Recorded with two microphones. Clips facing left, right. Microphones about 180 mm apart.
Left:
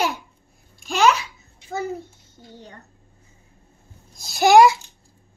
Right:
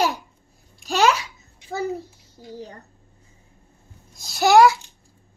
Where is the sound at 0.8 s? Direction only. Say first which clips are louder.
Left 1 dB; 40° right (ahead or behind).